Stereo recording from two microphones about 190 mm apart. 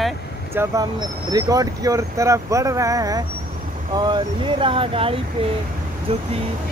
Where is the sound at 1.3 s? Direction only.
20° right (ahead or behind).